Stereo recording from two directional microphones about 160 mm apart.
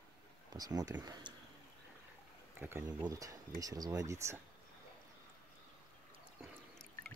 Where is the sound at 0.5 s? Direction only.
25° right (ahead or behind).